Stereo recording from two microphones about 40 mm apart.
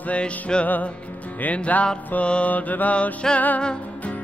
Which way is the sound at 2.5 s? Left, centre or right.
Left.